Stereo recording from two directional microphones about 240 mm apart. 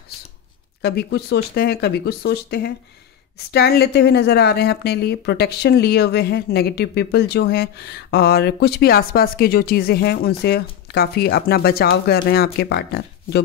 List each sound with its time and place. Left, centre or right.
0.8 s a woman's voice: left